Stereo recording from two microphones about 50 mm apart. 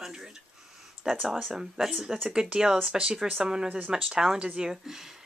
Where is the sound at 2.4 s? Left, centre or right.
Centre.